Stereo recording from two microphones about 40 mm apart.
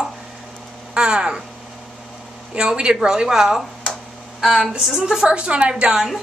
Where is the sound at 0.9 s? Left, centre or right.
Right.